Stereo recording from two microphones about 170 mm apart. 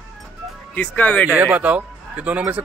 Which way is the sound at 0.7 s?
10° left (ahead or behind).